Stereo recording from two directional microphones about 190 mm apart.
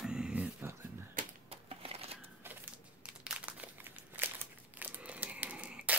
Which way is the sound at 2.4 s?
10° right (ahead or behind).